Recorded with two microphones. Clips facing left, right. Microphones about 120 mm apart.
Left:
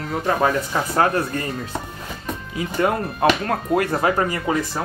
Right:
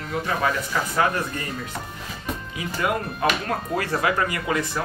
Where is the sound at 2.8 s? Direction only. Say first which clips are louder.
Left 4 dB; 35° left (ahead or behind).